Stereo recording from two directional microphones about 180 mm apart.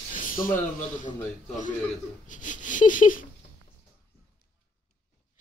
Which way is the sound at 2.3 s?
45° left (ahead or behind).